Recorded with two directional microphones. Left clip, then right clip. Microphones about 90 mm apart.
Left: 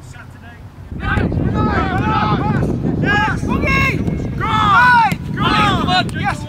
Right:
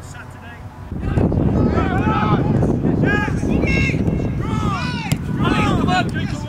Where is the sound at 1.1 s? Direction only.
25° left (ahead or behind).